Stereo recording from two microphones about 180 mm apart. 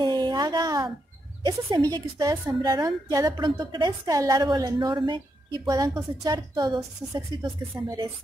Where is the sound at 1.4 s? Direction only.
20° right (ahead or behind).